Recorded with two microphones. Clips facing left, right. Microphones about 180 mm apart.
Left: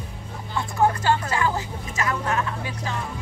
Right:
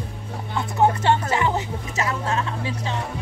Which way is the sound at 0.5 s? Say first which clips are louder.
Right 2 dB; 25° right (ahead or behind).